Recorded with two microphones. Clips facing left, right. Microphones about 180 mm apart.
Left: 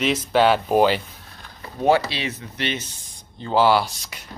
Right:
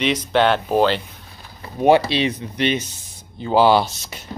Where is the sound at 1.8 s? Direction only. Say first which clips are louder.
Right 4 dB; 20° right (ahead or behind).